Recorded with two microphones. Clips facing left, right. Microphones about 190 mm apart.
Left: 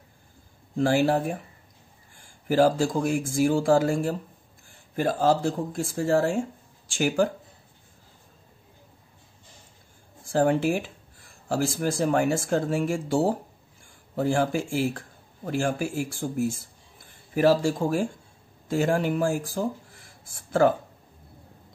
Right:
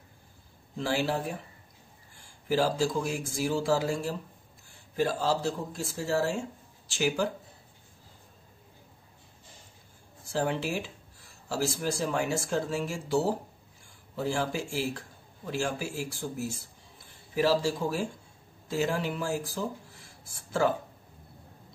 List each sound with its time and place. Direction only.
0.7 s speech: 50° left (ahead or behind)
10.2 s speech: 50° left (ahead or behind)